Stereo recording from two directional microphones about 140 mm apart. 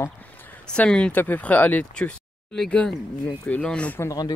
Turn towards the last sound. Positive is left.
turn(degrees=30)  # may be behind; listen again after turning